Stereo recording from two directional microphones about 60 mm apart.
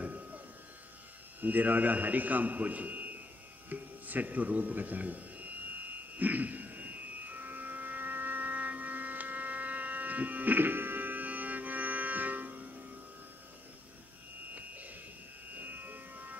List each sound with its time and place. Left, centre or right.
0.0 s electric shaver: right
1.4 s a man's voice: right
3.6 s a sound: right
15.5 s music: right